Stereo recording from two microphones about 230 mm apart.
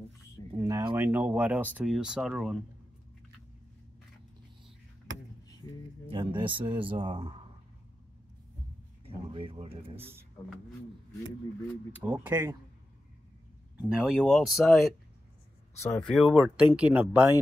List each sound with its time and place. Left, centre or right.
0.6 s speech: centre
6.0 s speech: right
9.0 s speech: right
9.9 s speech: centre
11.9 s speech: centre
13.9 s speech: centre
15.8 s speech: centre
16.1 s speech: centre